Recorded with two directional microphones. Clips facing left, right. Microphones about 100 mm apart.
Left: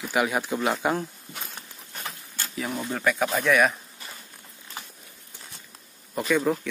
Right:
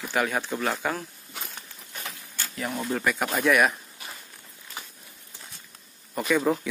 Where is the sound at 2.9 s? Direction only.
Centre (ahead or behind).